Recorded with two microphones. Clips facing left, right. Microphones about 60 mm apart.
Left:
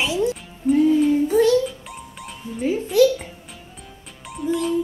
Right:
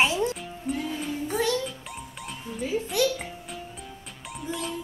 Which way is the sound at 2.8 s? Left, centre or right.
Centre.